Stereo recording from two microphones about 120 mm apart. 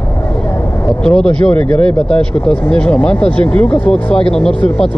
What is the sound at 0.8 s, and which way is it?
Speech, 5° left (ahead or behind).